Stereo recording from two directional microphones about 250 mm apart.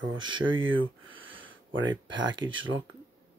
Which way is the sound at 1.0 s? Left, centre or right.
Right.